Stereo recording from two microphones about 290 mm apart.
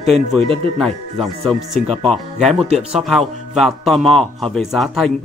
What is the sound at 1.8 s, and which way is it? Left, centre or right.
Speech, right.